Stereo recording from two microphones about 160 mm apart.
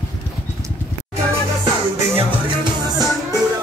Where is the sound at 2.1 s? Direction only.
30° right (ahead or behind).